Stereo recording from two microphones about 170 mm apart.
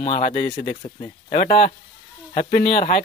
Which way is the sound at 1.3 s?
55° left (ahead or behind).